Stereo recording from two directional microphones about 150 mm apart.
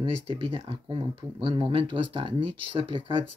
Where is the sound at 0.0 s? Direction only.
35° right (ahead or behind).